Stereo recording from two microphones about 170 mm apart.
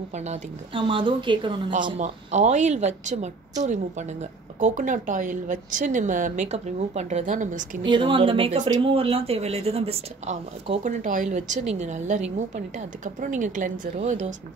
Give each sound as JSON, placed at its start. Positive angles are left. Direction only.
{"t": 0.1, "sound": "speech", "side_deg": -40}
{"t": 0.7, "sound": "a woman's voice", "side_deg": -30}
{"t": 2.0, "sound": "a woman's voice", "side_deg": -45}
{"t": 7.8, "sound": "a woman's voice", "side_deg": -30}